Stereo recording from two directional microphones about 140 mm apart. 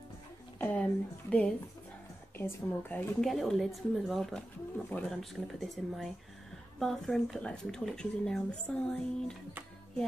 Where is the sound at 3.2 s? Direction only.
Centre (ahead or behind).